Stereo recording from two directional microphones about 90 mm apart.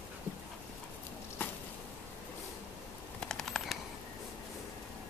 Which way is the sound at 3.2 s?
5° left (ahead or behind).